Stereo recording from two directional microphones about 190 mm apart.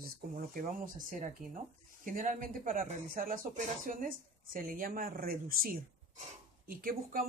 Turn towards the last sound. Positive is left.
turn(degrees=-50)  # may be behind; listen again after turning